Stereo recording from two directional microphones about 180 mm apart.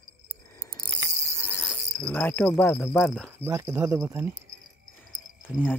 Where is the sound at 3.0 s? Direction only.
Centre (ahead or behind).